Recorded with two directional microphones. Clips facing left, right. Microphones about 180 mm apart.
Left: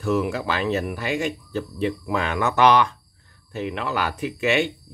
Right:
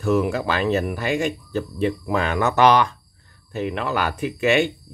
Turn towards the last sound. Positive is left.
turn(degrees=-50)  # may be behind; listen again after turning